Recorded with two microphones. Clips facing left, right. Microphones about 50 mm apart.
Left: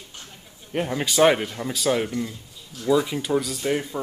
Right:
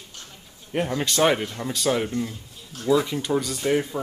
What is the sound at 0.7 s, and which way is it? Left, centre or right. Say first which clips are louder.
Speech: even; centre.